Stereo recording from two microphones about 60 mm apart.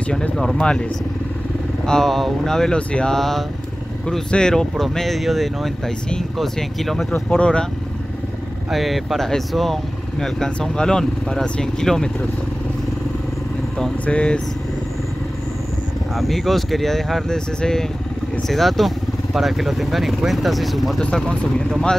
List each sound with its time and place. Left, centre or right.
0.6 s speech: centre
1.9 s speech: centre
3.2 s speech: centre
7.2 s speech: centre
8.6 s speech: centre
11.4 s speech: centre
14.0 s speech: centre
16.2 s speech: centre
21.0 s speech: centre